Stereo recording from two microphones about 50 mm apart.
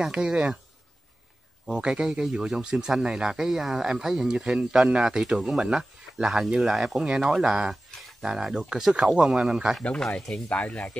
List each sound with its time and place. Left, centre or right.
0.0 s speech: centre
1.7 s speech: centre
10.1 s speech: centre
10.5 s speech: left